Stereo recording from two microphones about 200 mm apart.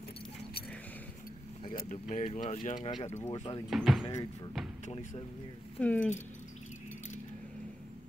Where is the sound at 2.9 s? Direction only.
25° left (ahead or behind).